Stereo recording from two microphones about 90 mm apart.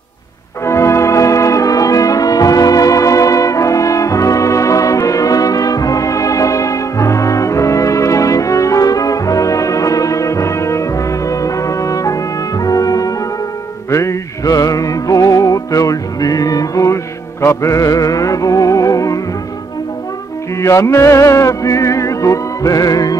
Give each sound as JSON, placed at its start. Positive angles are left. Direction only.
{"t": 0.7, "sound": "music", "side_deg": 30}
{"t": 20.6, "sound": "music", "side_deg": 35}